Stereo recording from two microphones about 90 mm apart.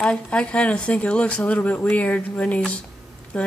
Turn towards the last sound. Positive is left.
turn(degrees=10)  # may be behind; listen again after turning